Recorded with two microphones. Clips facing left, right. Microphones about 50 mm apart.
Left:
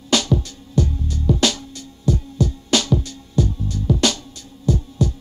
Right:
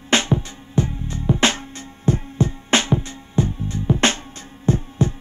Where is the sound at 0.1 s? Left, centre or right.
Right.